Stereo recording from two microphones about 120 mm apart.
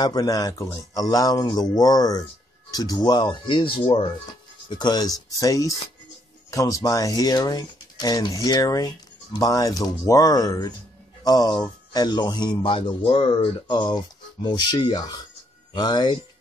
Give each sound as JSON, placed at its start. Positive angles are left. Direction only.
{"t": 0.0, "sound": "speech", "side_deg": 30}